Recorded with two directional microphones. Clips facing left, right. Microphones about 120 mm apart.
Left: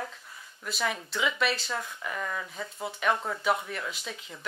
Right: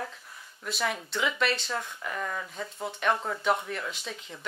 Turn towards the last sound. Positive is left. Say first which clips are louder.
# right 1 dB
turn(degrees=0)  # may be behind; listen again after turning